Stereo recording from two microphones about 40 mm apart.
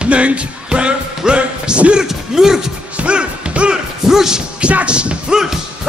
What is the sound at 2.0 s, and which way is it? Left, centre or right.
Speech, centre.